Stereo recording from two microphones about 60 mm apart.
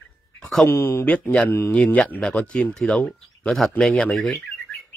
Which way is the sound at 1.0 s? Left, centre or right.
Left.